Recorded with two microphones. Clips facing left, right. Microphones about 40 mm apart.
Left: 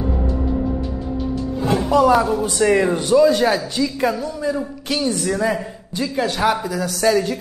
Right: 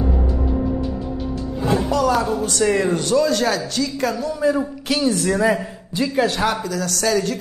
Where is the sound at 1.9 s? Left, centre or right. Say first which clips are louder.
Left 7 dB; left.